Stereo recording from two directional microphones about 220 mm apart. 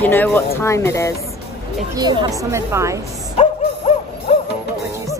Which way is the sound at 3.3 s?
30° left (ahead or behind).